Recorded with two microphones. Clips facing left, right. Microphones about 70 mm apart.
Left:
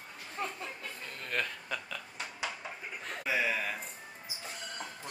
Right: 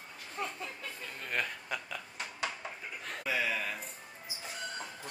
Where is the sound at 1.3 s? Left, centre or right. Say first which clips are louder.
Even; centre.